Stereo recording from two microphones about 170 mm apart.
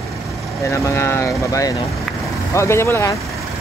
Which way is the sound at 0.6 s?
15° left (ahead or behind).